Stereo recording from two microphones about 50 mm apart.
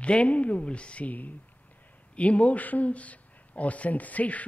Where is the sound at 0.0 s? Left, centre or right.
Left.